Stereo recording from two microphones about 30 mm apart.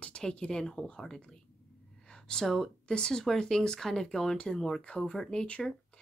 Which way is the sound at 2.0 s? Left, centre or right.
Left.